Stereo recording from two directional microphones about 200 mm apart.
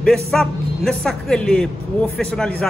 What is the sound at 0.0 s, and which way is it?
Speech, centre (ahead or behind).